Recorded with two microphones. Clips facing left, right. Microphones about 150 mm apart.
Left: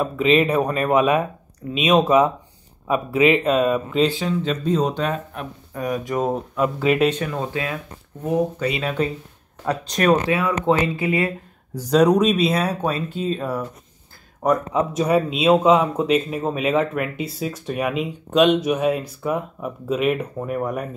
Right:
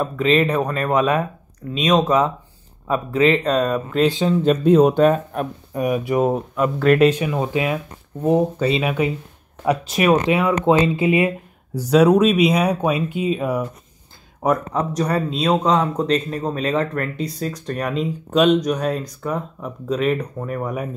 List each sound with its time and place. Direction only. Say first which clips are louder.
0.0 s speech: even; 10° left (ahead or behind)
4.0 s speech: right 3 dB; 20° right (ahead or behind)
4.5 s speech: right 9 dB; 60° right (ahead or behind); by 5.5 s 45° right (ahead or behind)
5.7 s speech: right 3 dB; 15° right (ahead or behind); by 7.2 s centre (ahead or behind)
7.2 s speech: right 4 dB; 10° right (ahead or behind)
8.2 s speech: right 4 dB; 30° right (ahead or behind)
8.8 s speech: right 2 dB; 10° right (ahead or behind)
10.2 s speech: right 3 dB; 20° right (ahead or behind)
12.4 s speech: right 3 dB; 15° right (ahead or behind)
15.0 s a man's voice: left 3 dB; 5° left (ahead or behind)